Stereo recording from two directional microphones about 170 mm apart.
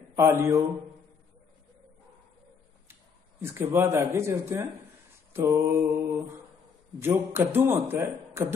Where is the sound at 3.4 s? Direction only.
10° right (ahead or behind).